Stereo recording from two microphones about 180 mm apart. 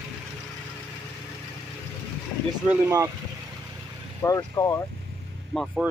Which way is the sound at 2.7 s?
15° right (ahead or behind).